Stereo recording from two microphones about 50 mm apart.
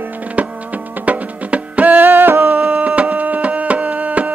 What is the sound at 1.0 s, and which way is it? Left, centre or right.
Music, right.